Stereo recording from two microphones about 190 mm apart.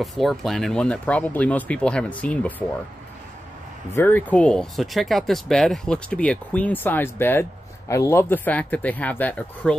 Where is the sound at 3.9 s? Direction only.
10° left (ahead or behind).